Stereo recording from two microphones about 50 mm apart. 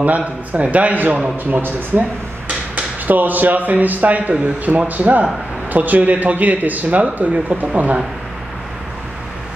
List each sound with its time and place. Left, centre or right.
0.0 s a man's voice: right